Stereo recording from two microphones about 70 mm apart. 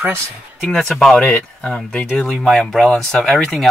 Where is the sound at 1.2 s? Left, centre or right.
Centre.